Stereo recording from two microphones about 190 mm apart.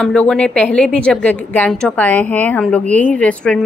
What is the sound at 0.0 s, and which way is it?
A woman's voice, 5° left (ahead or behind).